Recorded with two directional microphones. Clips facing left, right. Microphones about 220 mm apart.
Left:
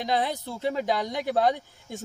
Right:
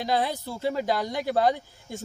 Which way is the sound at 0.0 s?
Centre (ahead or behind).